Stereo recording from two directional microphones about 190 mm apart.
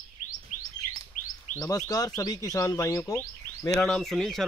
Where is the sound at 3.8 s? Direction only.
Centre (ahead or behind).